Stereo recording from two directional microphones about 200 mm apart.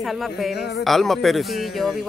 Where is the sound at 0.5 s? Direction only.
55° left (ahead or behind).